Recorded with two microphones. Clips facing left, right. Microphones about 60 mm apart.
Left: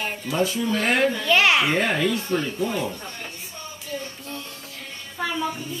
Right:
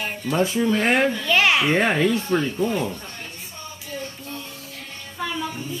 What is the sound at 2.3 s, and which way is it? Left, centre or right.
Speech, centre.